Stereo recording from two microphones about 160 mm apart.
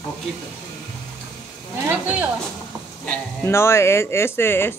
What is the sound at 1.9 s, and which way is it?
Speech, 10° right (ahead or behind).